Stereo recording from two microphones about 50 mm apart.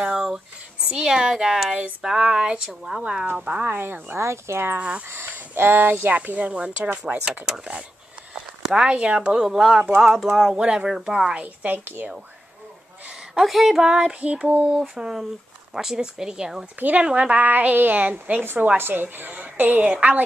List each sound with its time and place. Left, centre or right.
0.3 s speech: centre
1.7 s a woman's voice: right
2.1 s speech: centre
3.6 s speech: right
4.7 s speech: right
5.1 s speech: right
6.1 s speech: right
7.2 s speech: centre
11.6 s speech: right
13.3 s a woman's voice: centre
13.8 s speech: centre
17.0 s a woman's voice: right
18.4 s a woman's voice: right